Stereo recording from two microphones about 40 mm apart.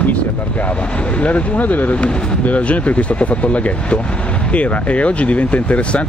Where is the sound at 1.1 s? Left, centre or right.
Left.